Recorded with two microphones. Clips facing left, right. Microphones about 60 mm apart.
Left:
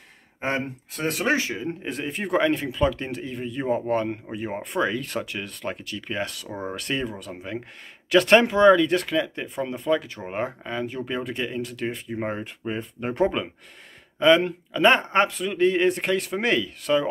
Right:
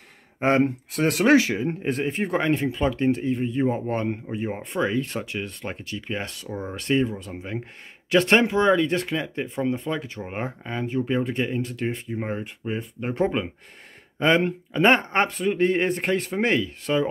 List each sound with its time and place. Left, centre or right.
0.4 s speech: right
1.6 s speech: right
2.0 s speech: right
10.3 s speech: centre
10.7 s speech: right
12.1 s speech: centre
12.4 s speech: centre
14.2 s speech: right